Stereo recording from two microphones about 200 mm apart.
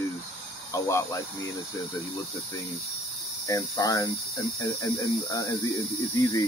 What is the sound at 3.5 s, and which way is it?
Speech, 15° left (ahead or behind).